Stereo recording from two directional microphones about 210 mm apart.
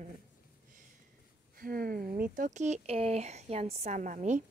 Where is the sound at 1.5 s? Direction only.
45° right (ahead or behind).